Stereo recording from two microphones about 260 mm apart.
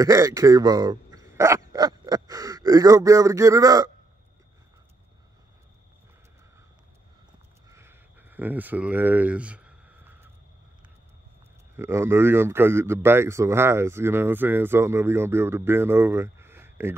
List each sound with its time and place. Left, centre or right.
0.0 s speech: centre
7.7 s a sound: centre
11.7 s speech: centre